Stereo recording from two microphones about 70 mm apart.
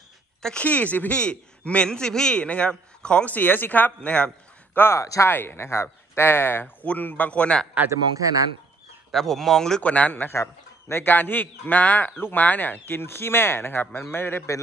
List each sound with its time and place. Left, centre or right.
0.4 s speech: centre
0.7 s speech: left
4.7 s speech: left
5.0 s speech: left
5.3 s speech: left
9.1 s speech: centre
9.8 s speech: left
10.3 s speech: left